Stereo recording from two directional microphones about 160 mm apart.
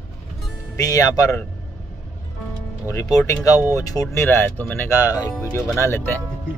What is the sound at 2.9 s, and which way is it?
Speech, 20° left (ahead or behind).